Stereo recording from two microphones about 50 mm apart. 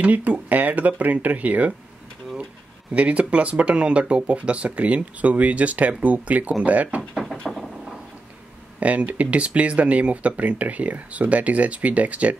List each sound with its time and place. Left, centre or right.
0.0 s speech: right
2.9 s speech: right
7.0 s speech: centre
8.7 s speech: right